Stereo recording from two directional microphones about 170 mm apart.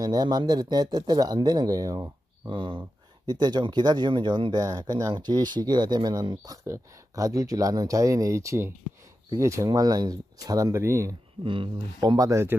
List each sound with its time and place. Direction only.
0.0 s speech: 25° right (ahead or behind)
11.4 s speech: 30° right (ahead or behind)